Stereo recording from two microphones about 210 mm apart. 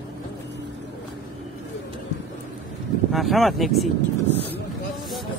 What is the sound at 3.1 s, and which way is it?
Speech, centre (ahead or behind).